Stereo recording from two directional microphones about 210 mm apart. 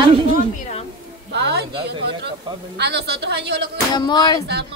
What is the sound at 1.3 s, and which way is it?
A woman's voice, 55° right (ahead or behind).